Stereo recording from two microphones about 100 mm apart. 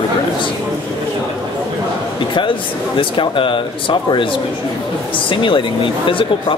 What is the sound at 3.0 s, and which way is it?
Speech, 60° left (ahead or behind).